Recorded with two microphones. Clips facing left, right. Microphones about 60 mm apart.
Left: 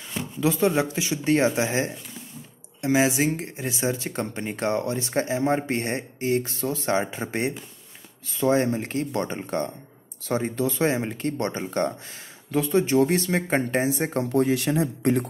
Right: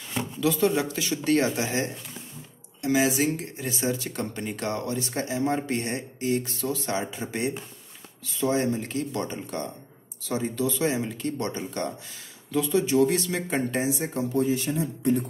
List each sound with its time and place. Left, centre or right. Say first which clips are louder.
0.4 s a woman's voice: left 2 dB; left
14.3 s speech: left 3 dB; left